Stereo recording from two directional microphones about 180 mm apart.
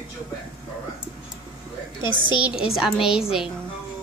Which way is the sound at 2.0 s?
25° left (ahead or behind).